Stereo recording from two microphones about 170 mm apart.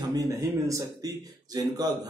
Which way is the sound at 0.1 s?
20° right (ahead or behind).